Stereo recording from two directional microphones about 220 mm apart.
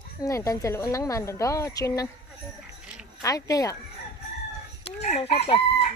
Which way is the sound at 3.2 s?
15° left (ahead or behind).